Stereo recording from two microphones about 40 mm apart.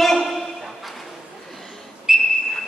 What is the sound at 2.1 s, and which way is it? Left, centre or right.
Whistle, centre.